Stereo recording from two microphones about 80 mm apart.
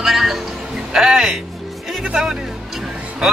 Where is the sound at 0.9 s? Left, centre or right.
Centre.